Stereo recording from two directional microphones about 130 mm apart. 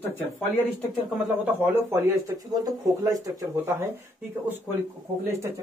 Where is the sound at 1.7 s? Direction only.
20° right (ahead or behind).